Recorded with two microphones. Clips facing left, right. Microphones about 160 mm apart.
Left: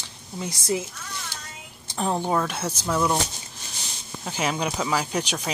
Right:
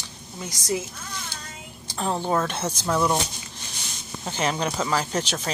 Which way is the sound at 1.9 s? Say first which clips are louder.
Even; 15° left (ahead or behind).